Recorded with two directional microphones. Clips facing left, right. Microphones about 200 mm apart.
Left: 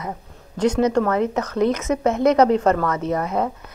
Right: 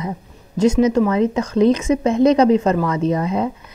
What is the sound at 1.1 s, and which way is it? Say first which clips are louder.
A woman's voice: right 4 dB; 20° right (ahead or behind).